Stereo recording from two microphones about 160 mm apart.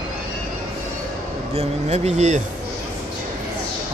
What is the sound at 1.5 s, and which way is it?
Speech, 45° right (ahead or behind).